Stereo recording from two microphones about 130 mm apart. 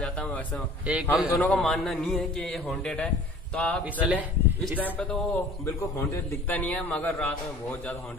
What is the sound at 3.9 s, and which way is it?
Speech, 10° right (ahead or behind).